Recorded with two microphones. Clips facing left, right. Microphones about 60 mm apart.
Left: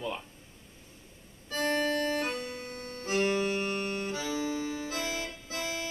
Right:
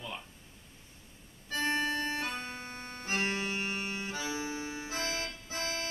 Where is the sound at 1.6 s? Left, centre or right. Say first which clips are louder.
Left 3 dB; right.